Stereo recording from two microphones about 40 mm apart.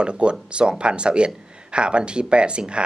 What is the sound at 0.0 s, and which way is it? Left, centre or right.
Speech, right.